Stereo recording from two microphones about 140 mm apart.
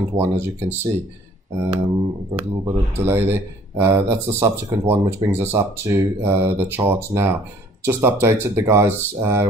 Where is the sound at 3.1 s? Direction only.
15° right (ahead or behind).